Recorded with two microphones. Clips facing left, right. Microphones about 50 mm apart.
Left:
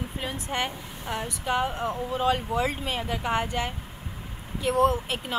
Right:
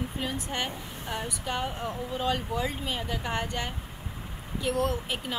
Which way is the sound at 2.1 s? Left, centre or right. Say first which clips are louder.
Left 4 dB; centre.